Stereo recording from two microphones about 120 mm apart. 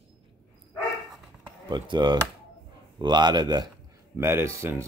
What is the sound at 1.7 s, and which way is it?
A man's voice, 40° right (ahead or behind).